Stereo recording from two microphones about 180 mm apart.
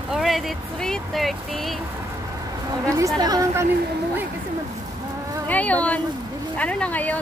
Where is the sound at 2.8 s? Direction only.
15° right (ahead or behind).